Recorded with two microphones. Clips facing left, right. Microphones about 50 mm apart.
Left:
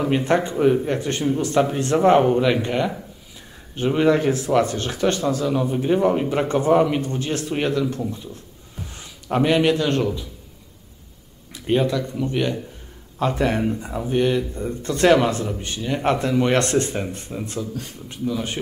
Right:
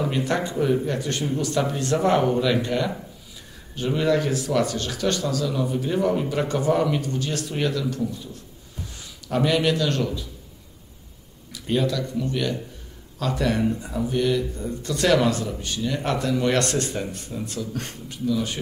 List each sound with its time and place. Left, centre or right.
0.1 s speech: left
11.5 s speech: left